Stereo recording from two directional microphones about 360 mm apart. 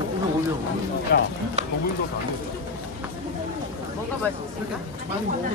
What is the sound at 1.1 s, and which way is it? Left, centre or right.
Speech, left.